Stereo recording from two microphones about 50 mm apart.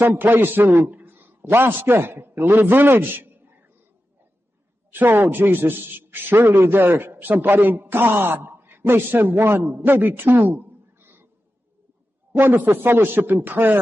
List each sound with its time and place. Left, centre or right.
0.0 s a man's voice: right
4.9 s a man's voice: right
12.3 s a man's voice: right